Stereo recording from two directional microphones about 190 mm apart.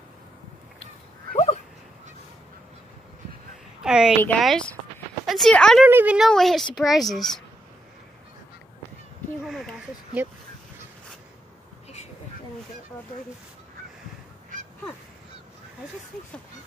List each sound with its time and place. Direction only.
1.3 s dog: 35° left (ahead or behind)
3.8 s a woman's voice: 5° right (ahead or behind)
5.9 s a woman's voice: 10° right (ahead or behind)
9.4 s a sound: centre (ahead or behind)